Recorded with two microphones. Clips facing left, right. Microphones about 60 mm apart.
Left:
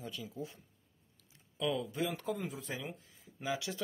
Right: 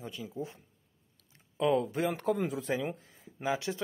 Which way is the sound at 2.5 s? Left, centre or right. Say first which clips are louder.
Right 9 dB; right.